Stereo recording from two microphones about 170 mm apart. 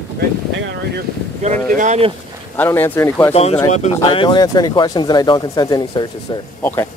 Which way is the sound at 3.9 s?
25° left (ahead or behind).